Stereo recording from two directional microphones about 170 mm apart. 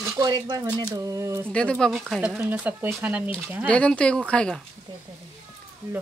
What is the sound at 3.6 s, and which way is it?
Speech, 5° left (ahead or behind).